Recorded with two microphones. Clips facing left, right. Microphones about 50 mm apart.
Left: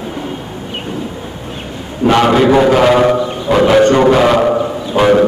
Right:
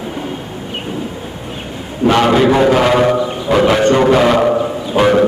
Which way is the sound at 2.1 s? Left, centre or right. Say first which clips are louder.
Left 1 dB; centre.